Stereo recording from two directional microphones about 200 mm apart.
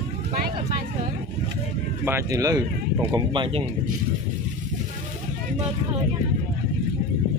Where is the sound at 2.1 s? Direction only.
15° right (ahead or behind).